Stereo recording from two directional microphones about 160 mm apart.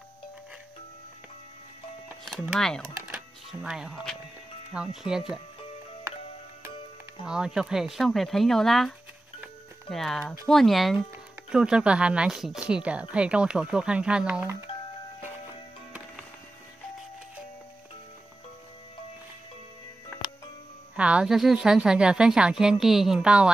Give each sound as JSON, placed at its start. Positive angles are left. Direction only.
{"t": 2.5, "sound": "a woman's voice", "side_deg": 5}
{"t": 3.0, "sound": "a woman's voice", "side_deg": -10}
{"t": 6.1, "sound": "music", "side_deg": -20}
{"t": 7.2, "sound": "a woman's voice", "side_deg": -5}
{"t": 9.4, "sound": "music", "side_deg": 0}
{"t": 10.5, "sound": "a woman's voice", "side_deg": 0}
{"t": 20.9, "sound": "a woman's voice", "side_deg": -5}